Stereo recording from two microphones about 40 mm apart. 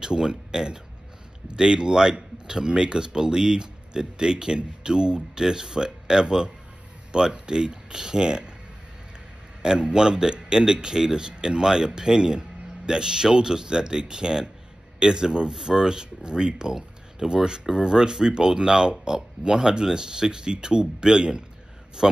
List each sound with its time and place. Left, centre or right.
0.0 s speech: centre
9.6 s speech: right